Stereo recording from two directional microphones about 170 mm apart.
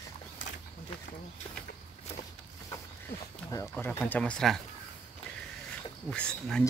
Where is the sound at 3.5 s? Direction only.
15° left (ahead or behind).